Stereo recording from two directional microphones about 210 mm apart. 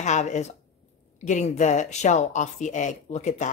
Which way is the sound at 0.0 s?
35° left (ahead or behind).